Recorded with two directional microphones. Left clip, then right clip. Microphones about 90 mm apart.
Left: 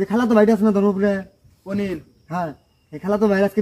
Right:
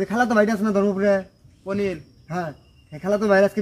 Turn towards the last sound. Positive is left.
turn(degrees=-25)  # may be behind; listen again after turning